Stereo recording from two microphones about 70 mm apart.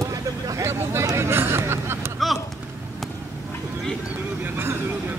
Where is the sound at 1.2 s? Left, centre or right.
Right.